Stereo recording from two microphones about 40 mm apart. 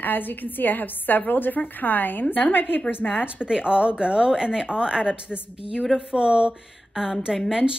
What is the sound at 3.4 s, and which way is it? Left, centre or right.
Speech, right.